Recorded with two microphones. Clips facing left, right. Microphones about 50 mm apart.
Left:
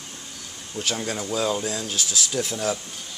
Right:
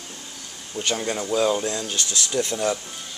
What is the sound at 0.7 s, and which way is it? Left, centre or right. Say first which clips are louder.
Speech: right 2 dB; centre.